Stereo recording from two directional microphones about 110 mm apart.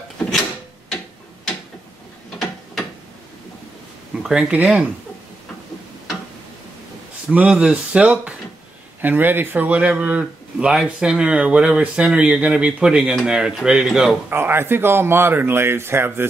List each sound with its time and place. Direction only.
0.2 s a sound: 5° left (ahead or behind)
0.9 s tick-tock: 5° left (ahead or behind)
2.3 s ratchet: centre (ahead or behind)
4.2 s speech: 10° right (ahead or behind)
7.3 s speech: 10° right (ahead or behind)
14.3 s speech: 20° right (ahead or behind)